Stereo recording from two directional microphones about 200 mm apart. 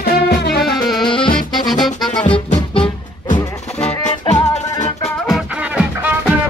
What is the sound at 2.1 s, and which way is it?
Music, 25° left (ahead or behind).